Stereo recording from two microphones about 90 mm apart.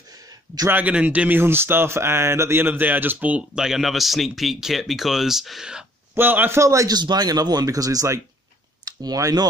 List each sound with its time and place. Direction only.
0.7 s speech: 20° right (ahead or behind)
6.1 s a man's voice: 20° right (ahead or behind)
6.6 s a man's voice: 35° right (ahead or behind)
6.9 s speech: 50° right (ahead or behind)